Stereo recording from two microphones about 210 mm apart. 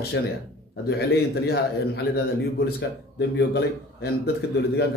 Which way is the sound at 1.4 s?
50° left (ahead or behind).